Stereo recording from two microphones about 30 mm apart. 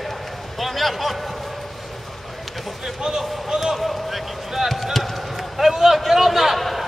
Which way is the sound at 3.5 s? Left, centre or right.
Centre.